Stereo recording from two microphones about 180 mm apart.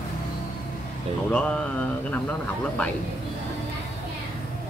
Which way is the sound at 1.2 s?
5° left (ahead or behind).